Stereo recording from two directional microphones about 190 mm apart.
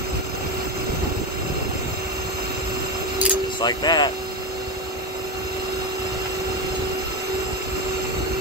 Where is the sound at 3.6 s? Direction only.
20° left (ahead or behind).